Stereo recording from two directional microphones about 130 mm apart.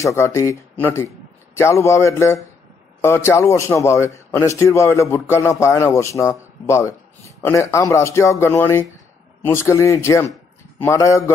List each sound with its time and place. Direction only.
0.0 s a man's voice: 20° left (ahead or behind)